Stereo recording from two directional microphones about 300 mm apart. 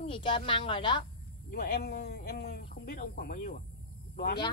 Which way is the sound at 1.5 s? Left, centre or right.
Left.